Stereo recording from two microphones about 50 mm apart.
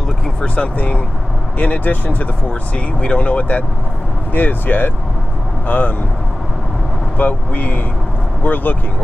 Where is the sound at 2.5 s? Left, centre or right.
Left.